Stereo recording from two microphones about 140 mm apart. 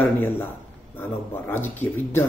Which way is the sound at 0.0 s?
15° left (ahead or behind).